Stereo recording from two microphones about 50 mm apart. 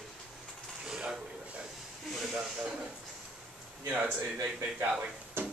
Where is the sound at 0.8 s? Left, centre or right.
Centre.